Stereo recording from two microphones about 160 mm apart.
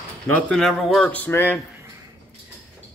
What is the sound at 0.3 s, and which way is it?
Speech, 5° left (ahead or behind).